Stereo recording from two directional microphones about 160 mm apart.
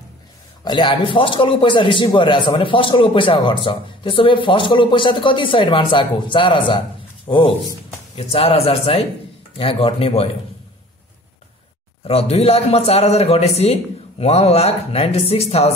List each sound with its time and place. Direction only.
0.7 s a man's voice: 30° left (ahead or behind)
12.0 s a man's voice: 40° left (ahead or behind)